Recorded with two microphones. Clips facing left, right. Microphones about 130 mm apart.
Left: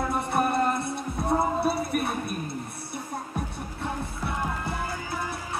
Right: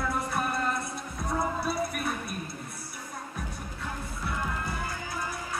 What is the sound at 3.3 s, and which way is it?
Music, 25° left (ahead or behind).